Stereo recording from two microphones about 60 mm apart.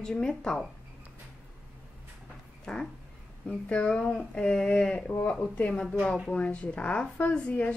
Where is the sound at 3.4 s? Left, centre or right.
Centre.